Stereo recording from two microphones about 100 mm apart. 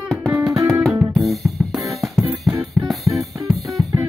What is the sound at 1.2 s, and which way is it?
Music, centre (ahead or behind).